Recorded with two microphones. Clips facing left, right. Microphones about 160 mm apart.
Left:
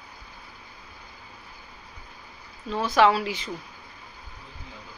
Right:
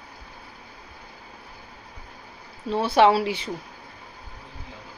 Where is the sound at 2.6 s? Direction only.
30° right (ahead or behind).